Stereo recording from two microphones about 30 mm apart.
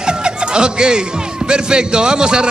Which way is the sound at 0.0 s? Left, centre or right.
Right.